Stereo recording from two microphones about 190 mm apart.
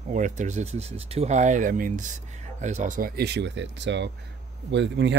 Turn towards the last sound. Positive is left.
turn(degrees=-65)  # may be behind; listen again after turning